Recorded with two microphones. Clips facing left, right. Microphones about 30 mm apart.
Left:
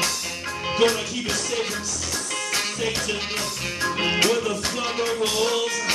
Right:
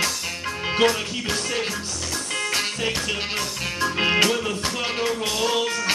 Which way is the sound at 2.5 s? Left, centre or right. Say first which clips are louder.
Left 1 dB; centre.